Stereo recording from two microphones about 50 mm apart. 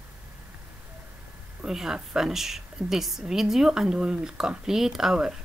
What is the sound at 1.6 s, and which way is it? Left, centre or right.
A woman's voice, centre.